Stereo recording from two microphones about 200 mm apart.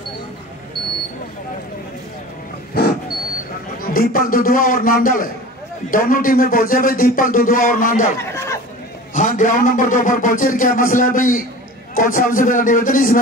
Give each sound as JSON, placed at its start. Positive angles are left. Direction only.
{"t": 2.8, "sound": "wild animals", "side_deg": 55}
{"t": 3.8, "sound": "speech", "side_deg": 45}
{"t": 8.2, "sound": "chatter", "side_deg": 15}
{"t": 9.1, "sound": "a man's voice", "side_deg": 40}